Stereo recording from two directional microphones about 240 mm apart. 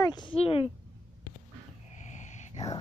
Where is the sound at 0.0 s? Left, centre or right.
Centre.